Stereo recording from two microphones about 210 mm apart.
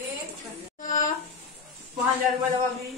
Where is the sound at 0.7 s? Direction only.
40° left (ahead or behind).